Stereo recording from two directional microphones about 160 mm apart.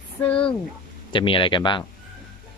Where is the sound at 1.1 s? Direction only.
30° left (ahead or behind).